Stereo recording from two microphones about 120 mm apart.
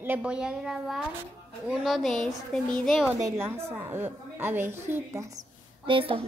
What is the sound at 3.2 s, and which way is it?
A child's voice, 20° right (ahead or behind).